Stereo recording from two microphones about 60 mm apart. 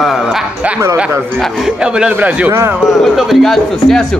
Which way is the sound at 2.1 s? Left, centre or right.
Right.